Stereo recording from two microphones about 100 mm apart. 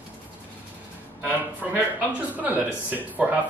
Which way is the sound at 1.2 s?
15° right (ahead or behind).